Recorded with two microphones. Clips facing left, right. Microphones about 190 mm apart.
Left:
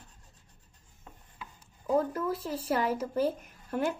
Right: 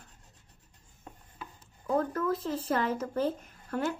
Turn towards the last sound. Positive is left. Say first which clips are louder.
# left 1 dB
turn(degrees=15)  # may be behind; listen again after turning